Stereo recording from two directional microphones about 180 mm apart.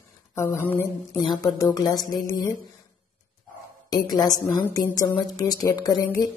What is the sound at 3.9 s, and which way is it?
Speech, 20° left (ahead or behind).